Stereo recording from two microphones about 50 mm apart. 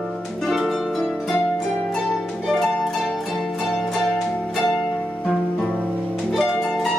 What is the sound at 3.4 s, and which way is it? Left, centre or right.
Music, centre.